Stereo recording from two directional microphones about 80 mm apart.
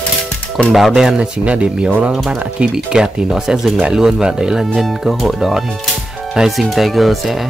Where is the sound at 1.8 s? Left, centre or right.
Right.